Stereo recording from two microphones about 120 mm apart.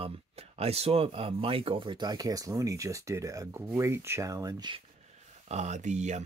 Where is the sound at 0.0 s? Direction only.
55° right (ahead or behind); by 4.7 s 35° right (ahead or behind).